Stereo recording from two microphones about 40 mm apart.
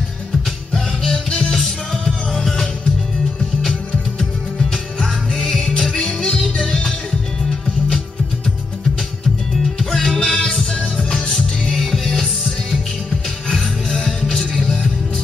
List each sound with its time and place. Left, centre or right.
1.0 s music: centre
5.3 s music: centre
9.8 s music: centre
11.7 s music: centre
14.3 s music: centre